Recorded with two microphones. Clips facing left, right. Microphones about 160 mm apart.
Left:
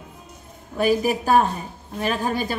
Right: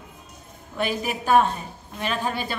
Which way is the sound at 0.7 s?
40° left (ahead or behind).